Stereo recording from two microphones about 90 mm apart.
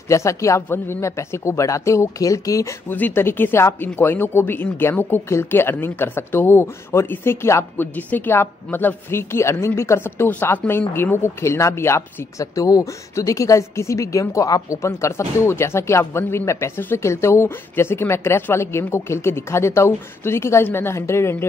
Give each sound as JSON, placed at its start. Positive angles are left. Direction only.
{"t": 0.1, "sound": "a woman's voice", "side_deg": 35}
{"t": 2.9, "sound": "a woman's voice", "side_deg": 20}